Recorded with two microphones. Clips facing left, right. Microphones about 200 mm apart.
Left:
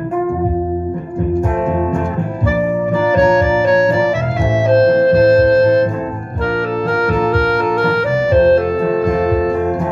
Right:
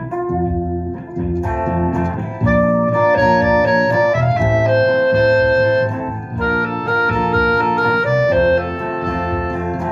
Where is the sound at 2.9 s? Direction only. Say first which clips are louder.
Left 6 dB; 30° left (ahead or behind).